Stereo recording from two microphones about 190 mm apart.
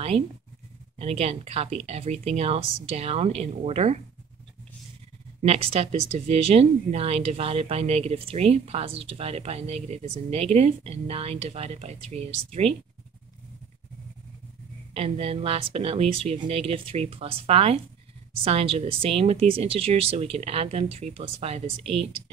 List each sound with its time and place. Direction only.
0.9 s speech: 30° right (ahead or behind)
5.4 s speech: 30° right (ahead or behind)
15.0 s speech: 30° right (ahead or behind)